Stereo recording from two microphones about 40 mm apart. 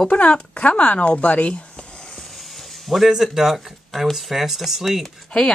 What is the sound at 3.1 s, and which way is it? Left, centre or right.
Speech, centre.